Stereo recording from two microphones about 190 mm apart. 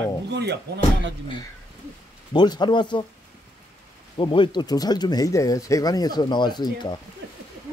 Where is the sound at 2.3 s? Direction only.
25° left (ahead or behind).